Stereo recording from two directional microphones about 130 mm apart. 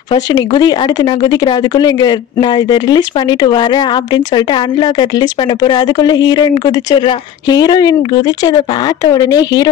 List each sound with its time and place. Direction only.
0.1 s speech: 35° left (ahead or behind)